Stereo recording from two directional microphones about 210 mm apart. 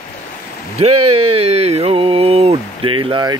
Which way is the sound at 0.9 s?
90° right.